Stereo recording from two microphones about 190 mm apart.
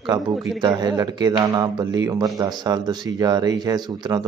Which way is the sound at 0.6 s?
20° right (ahead or behind).